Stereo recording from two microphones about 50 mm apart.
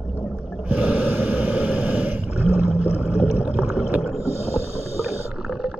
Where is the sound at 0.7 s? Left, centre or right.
Right.